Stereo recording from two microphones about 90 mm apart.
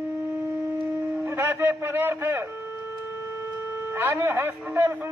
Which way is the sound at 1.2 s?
30° right (ahead or behind).